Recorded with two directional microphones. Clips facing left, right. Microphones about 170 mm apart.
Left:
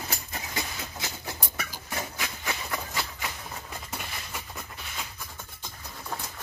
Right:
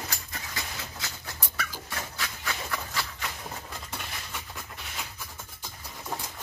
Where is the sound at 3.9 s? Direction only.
5° left (ahead or behind).